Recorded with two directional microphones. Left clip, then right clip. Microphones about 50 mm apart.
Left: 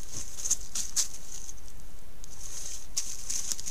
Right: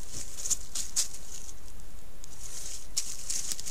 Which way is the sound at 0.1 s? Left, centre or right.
Left.